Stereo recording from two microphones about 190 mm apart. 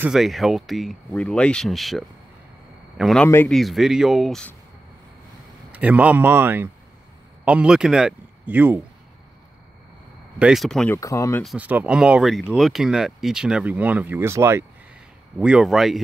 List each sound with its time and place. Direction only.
0.0 s speech: centre (ahead or behind)
3.3 s speech: 10° left (ahead or behind)
3.5 s speech: centre (ahead or behind)
5.7 s speech: 5° right (ahead or behind)
10.4 s speech: centre (ahead or behind)
11.0 s speech: 15° left (ahead or behind)
11.4 s speech: 5° right (ahead or behind)